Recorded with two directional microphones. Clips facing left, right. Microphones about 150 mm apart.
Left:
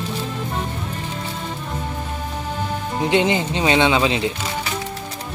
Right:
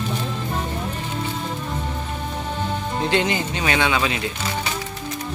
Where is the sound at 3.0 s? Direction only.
20° left (ahead or behind).